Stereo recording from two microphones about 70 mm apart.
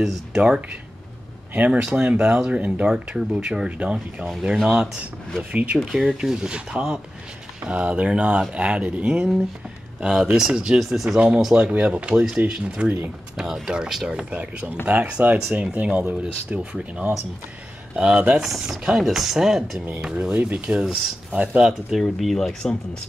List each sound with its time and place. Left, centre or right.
0.0 s speech: centre
1.7 s speech: centre
5.9 s speech: centre
11.1 s speech: centre
17.9 s speech: centre
22.0 s speech: centre